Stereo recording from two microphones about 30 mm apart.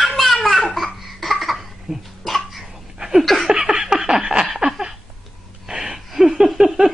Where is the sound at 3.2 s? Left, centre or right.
Centre.